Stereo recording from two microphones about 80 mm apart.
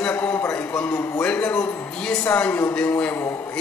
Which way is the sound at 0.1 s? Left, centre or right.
Left.